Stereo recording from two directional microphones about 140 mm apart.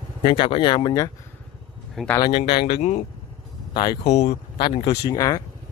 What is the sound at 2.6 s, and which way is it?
Speech, 50° left (ahead or behind).